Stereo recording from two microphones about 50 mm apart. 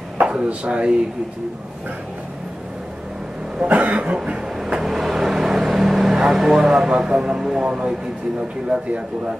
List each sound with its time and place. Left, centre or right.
0.2 s speech: right
3.6 s cough: right
4.6 s vehicle: centre
6.2 s speech: centre
8.6 s cough: centre